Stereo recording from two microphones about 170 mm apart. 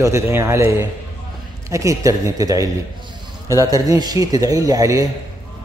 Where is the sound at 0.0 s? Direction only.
15° right (ahead or behind).